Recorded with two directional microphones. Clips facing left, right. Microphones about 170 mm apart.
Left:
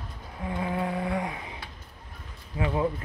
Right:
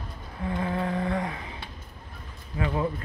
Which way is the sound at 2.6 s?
20° left (ahead or behind).